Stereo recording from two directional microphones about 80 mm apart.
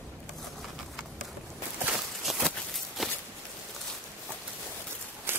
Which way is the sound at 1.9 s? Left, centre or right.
Centre.